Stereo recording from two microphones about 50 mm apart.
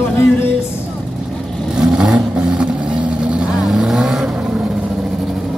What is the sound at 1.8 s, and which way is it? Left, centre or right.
Vehicle, centre.